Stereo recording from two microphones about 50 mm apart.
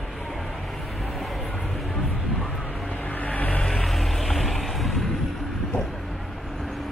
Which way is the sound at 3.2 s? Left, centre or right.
Left.